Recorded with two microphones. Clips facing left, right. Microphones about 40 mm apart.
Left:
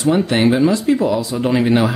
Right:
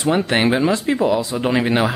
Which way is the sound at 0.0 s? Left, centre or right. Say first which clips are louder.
Left 2 dB; right.